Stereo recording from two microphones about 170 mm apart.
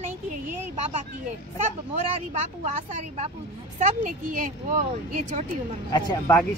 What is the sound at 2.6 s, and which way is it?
A woman's voice, 40° right (ahead or behind).